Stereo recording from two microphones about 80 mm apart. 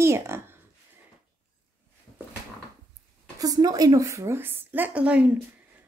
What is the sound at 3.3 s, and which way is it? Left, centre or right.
A woman's voice, right.